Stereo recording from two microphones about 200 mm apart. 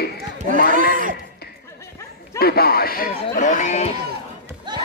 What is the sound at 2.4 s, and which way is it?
A man's voice, 50° left (ahead or behind).